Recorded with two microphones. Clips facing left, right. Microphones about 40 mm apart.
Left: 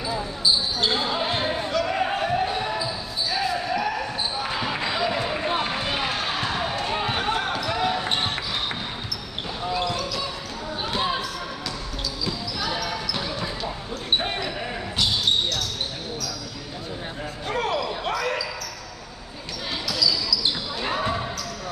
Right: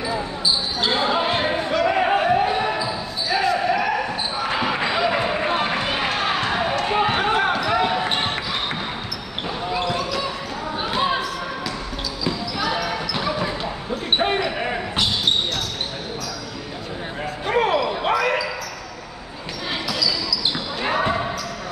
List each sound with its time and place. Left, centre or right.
0.8 s basketball bounce: right
9.8 s basketball bounce: right
13.1 s basketball bounce: right
17.5 s basketball bounce: right
20.5 s basketball bounce: right